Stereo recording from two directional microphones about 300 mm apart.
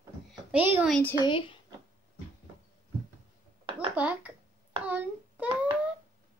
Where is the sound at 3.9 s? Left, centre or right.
Centre.